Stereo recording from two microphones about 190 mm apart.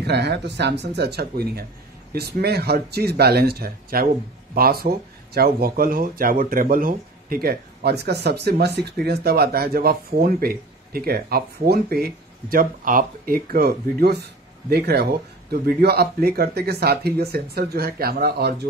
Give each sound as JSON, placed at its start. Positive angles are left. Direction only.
{"t": 0.0, "sound": "speech", "side_deg": -60}